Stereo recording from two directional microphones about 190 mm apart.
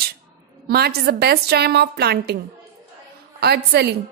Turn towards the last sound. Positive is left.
turn(degrees=-60)  # may be behind; listen again after turning